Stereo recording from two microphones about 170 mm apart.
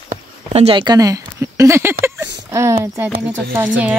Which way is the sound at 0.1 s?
40° right (ahead or behind).